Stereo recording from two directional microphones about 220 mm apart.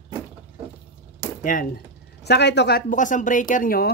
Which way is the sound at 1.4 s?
40° left (ahead or behind).